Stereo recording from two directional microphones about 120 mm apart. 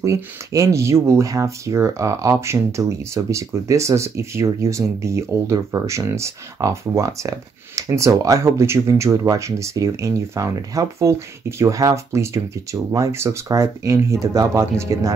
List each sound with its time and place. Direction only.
0.0 s speech: 25° right (ahead or behind)